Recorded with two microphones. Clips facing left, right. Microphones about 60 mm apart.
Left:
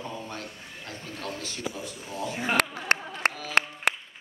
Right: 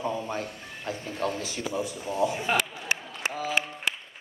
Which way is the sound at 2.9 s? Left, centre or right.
Left.